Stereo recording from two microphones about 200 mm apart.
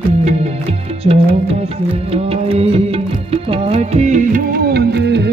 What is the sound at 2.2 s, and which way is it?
Music, 30° right (ahead or behind).